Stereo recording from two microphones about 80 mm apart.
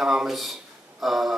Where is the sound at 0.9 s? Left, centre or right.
Centre.